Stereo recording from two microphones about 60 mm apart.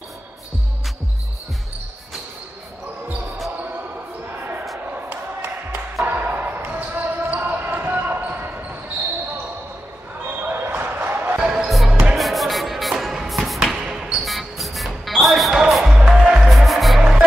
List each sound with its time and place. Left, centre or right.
5.1 s a sound: right
6.0 s basketball bounce: right
10.4 s basketball bounce: right
11.3 s music: centre
11.9 s music: centre
12.2 s music: centre
13.5 s basketball bounce: centre
14.2 s music: centre
16.4 s music: centre